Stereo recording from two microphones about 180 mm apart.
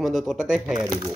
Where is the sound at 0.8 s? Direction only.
20° right (ahead or behind).